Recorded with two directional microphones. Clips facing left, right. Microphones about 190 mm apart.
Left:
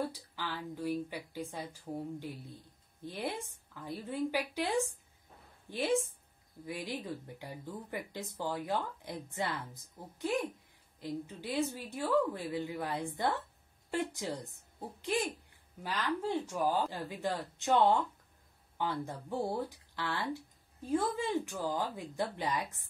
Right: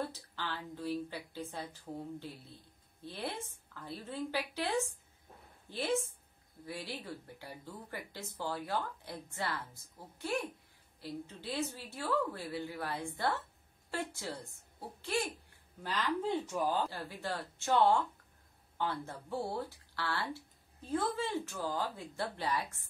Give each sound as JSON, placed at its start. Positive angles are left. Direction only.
{"t": 0.0, "sound": "a woman's voice", "side_deg": 10}